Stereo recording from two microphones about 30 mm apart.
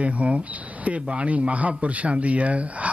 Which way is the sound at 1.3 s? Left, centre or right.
Right.